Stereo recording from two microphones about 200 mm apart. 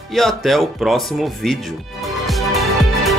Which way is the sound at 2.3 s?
Centre (ahead or behind).